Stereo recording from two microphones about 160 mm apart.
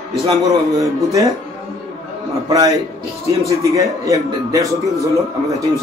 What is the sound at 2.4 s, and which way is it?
A man's voice, 20° right (ahead or behind).